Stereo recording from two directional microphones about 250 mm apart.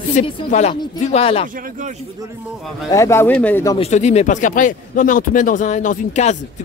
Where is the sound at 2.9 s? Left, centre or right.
Centre.